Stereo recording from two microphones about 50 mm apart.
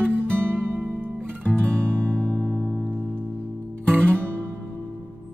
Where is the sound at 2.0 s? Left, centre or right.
Centre.